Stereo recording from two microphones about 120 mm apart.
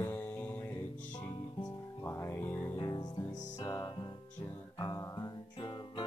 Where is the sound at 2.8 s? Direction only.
30° left (ahead or behind).